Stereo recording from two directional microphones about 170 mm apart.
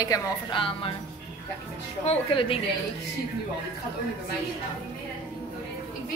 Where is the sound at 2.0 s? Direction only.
30° left (ahead or behind).